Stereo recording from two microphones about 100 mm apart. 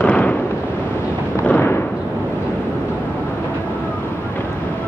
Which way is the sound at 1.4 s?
20° left (ahead or behind).